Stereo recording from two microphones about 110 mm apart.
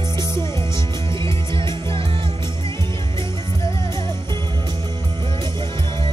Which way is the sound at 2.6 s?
25° left (ahead or behind).